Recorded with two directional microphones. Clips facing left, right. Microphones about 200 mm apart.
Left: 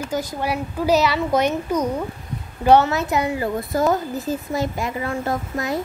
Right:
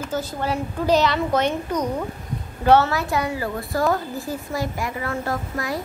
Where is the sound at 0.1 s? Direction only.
15° left (ahead or behind).